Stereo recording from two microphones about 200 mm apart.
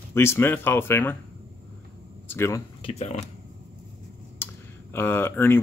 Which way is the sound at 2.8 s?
30° left (ahead or behind).